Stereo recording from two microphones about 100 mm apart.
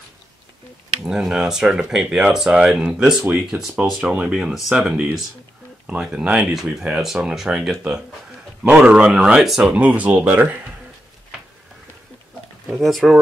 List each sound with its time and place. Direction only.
1.0 s speech: 5° right (ahead or behind)
12.8 s speech: centre (ahead or behind)